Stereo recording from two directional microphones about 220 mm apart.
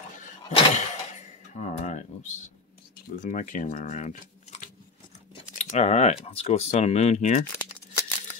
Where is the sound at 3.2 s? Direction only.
35° left (ahead or behind).